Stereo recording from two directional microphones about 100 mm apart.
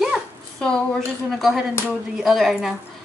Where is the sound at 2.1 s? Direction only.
Centre (ahead or behind).